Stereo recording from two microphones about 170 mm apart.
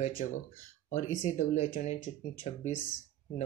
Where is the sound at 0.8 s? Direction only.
45° left (ahead or behind).